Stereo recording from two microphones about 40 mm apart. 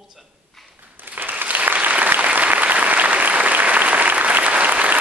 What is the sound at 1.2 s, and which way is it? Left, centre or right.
Applause, right.